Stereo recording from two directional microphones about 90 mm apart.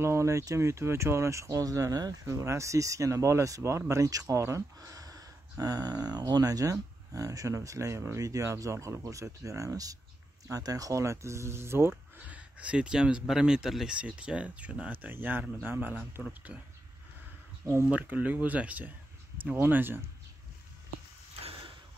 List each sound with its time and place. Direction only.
0.0 s speech: 30° right (ahead or behind)
4.7 s speech: 40° right (ahead or behind)
12.3 s speech: 15° right (ahead or behind)
16.2 s speech: 10° left (ahead or behind)
17.8 s speech: 15° right (ahead or behind)
21.4 s sliding door: 85° right